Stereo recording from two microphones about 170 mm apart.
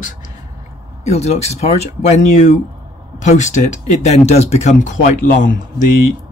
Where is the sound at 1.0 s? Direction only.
40° left (ahead or behind).